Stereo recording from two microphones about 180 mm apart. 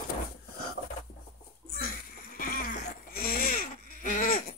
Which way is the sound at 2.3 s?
55° left (ahead or behind).